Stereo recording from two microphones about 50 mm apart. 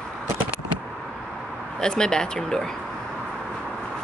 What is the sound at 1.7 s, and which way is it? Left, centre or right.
Speech, centre.